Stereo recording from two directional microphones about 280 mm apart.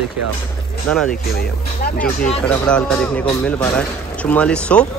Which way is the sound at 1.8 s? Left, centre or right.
Left.